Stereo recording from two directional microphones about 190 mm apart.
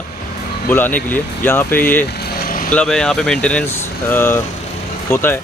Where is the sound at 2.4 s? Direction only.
45° left (ahead or behind).